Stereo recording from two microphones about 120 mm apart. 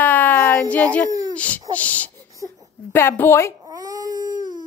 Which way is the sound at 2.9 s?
20° left (ahead or behind).